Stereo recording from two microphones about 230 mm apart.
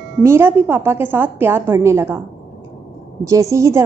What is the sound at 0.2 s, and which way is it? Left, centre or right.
A woman's voice, centre.